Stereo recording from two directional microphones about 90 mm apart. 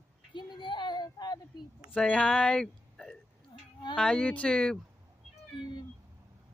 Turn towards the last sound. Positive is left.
turn(degrees=55)  # may be behind; listen again after turning